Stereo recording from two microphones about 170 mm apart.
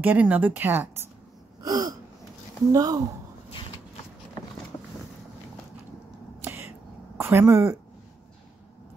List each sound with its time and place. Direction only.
0.0 s speech: 10° right (ahead or behind)
1.6 s gasp: 20° right (ahead or behind)
2.7 s speech: 20° right (ahead or behind)
4.7 s vehicle: 25° left (ahead or behind)
7.2 s a woman's voice: 15° right (ahead or behind)